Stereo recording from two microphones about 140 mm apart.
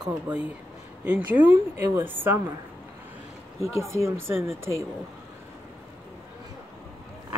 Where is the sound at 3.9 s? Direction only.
20° right (ahead or behind).